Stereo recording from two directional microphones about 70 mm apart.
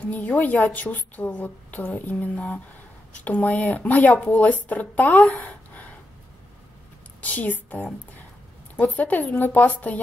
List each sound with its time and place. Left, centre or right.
0.0 s a woman's voice: left
7.2 s a woman's voice: left